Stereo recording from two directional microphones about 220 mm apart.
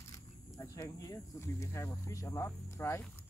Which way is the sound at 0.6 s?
15° left (ahead or behind).